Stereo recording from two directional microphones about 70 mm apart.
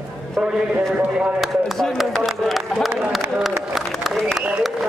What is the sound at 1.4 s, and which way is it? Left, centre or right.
Speech, centre.